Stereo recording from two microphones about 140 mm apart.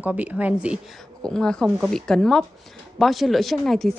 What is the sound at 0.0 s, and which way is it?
Speech, 10° right (ahead or behind).